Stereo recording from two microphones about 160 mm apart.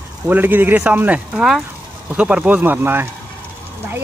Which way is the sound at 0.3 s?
10° right (ahead or behind).